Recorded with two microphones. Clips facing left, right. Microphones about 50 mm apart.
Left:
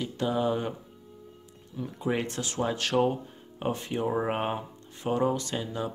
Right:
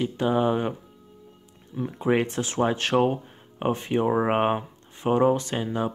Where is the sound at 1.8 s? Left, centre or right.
Right.